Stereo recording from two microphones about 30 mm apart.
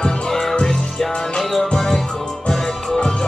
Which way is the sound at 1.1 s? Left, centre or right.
Left.